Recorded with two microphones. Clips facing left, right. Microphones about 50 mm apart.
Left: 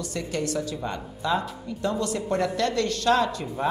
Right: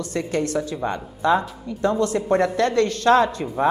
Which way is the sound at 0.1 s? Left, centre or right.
Right.